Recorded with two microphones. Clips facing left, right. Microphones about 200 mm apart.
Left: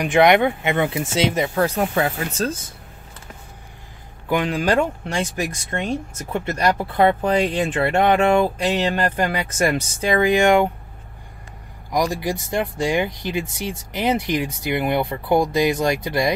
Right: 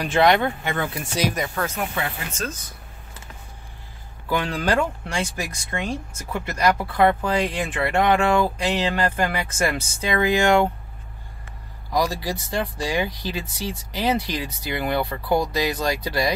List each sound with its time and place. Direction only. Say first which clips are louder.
0.0 s speech: left 4 dB; 15° left (ahead or behind); by 2.7 s 35° left (ahead or behind)
4.3 s speech: left 3 dB; 15° left (ahead or behind)
11.9 s speech: left 2 dB; 20° left (ahead or behind)